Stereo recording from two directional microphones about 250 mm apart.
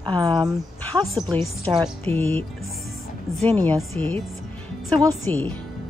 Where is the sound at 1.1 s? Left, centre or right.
Centre.